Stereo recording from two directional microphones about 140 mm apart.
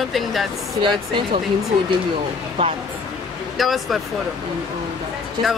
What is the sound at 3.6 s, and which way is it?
Speech, centre (ahead or behind).